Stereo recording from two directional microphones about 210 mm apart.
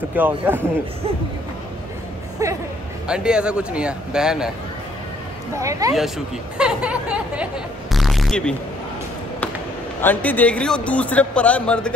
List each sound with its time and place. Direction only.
0.1 s a man's voice: 10° right (ahead or behind)
2.4 s a man's voice: 15° right (ahead or behind)
3.1 s speech: 5° right (ahead or behind)
5.6 s a man's voice: 15° right (ahead or behind)
5.9 s speech: centre (ahead or behind)
7.9 s a sound: centre (ahead or behind)
10.0 s speech: 10° left (ahead or behind)